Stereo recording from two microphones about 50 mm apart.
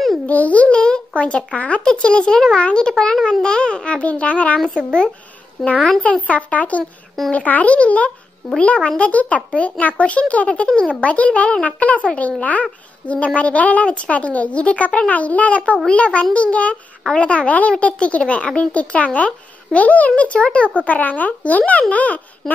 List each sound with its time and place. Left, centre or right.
0.3 s a child's voice: left
5.6 s a child's voice: centre
6.2 s a child's voice: left